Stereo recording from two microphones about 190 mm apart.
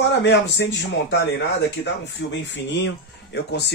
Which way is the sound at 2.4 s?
70° left (ahead or behind).